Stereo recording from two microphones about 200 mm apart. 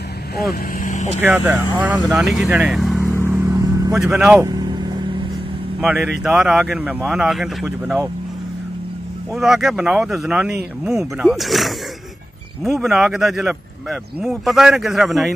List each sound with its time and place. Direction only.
0.7 s vehicle: 35° left (ahead or behind)
1.2 s speech: 10° right (ahead or behind)
3.3 s vehicle: 15° right (ahead or behind)
3.9 s speech: 5° right (ahead or behind)
4.4 s vehicle: 20° right (ahead or behind)
5.8 s speech: 5° right (ahead or behind)
9.3 s speech: centre (ahead or behind)